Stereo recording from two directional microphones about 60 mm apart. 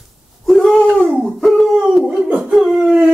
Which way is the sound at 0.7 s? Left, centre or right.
Centre.